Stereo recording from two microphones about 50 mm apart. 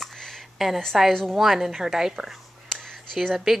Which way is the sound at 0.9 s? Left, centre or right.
Centre.